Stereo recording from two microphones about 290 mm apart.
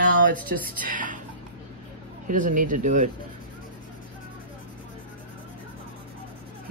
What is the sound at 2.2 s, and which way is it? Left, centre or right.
Speech, right.